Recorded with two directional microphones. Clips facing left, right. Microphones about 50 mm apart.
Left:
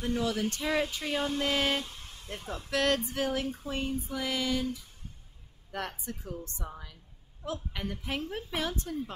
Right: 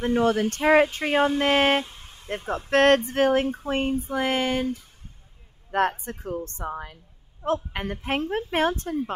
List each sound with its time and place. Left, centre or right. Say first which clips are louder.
0.0 s speech: right 9 dB; right
1.9 s vehicle: right 1 dB; right
2.2 s speech: right 10 dB; right